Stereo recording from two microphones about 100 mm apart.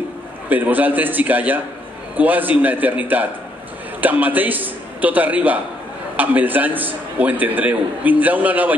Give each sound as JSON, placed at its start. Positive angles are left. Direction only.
{"t": 0.5, "sound": "a man's voice", "side_deg": -15}